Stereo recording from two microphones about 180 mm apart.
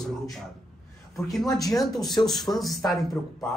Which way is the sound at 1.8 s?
Centre (ahead or behind).